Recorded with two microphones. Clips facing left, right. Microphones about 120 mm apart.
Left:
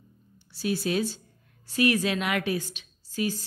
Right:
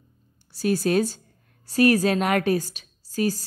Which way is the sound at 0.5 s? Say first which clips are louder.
Right 5 dB; 45° right (ahead or behind).